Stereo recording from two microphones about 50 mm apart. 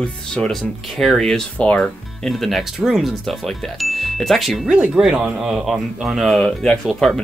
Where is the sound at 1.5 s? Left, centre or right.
Left.